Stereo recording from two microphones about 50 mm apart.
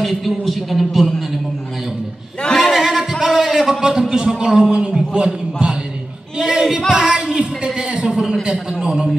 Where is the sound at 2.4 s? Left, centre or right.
Centre.